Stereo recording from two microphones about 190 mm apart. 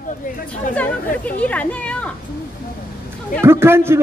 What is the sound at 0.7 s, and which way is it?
Chatter, 10° left (ahead or behind).